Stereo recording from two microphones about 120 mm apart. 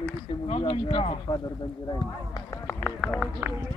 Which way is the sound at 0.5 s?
50° left (ahead or behind).